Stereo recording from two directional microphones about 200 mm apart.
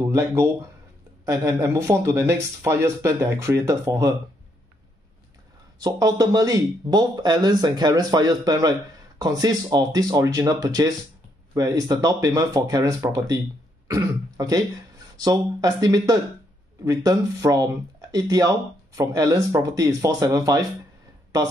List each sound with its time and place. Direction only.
0.1 s speech: 15° right (ahead or behind)
5.8 s speech: 20° right (ahead or behind)